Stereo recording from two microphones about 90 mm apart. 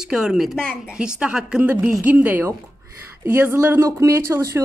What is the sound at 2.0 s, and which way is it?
A woman's voice, 20° right (ahead or behind).